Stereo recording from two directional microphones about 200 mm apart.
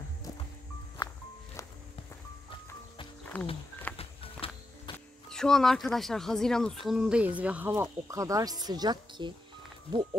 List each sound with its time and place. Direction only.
3.3 s speech: 5° left (ahead or behind)
3.9 s music: 30° left (ahead or behind)
4.9 s speech: 5° left (ahead or behind); by 9.3 s 20° right (ahead or behind)